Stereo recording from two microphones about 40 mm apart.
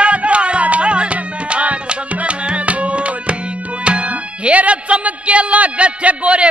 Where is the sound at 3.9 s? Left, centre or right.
Right.